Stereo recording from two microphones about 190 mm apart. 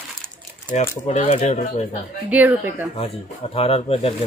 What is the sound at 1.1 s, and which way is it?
Speech, 35° left (ahead or behind).